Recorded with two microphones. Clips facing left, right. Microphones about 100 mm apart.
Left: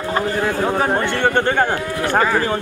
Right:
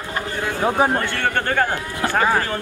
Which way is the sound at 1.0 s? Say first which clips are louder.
Left 5 dB; 20° left (ahead or behind).